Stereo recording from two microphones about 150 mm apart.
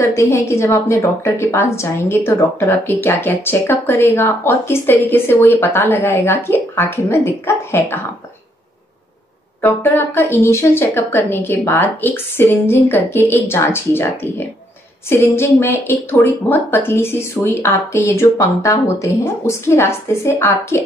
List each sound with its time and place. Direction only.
0.1 s a woman's voice: 15° left (ahead or behind)
9.6 s a woman's voice: 15° left (ahead or behind)